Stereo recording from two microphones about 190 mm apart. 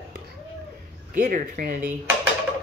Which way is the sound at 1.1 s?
45° right (ahead or behind).